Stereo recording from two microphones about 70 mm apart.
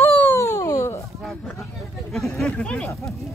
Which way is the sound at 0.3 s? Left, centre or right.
Left.